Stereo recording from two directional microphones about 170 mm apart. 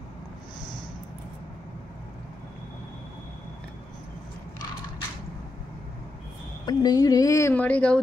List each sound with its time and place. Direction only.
6.6 s a woman's voice: 20° left (ahead or behind)